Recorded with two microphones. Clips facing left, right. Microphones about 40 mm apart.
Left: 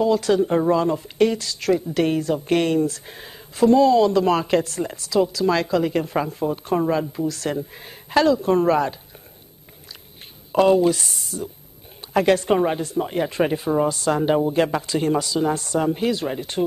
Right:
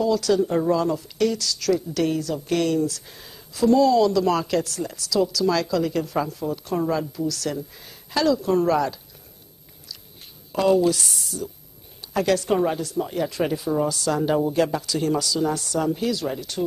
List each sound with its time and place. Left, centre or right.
0.0 s speech: left
10.5 s speech: left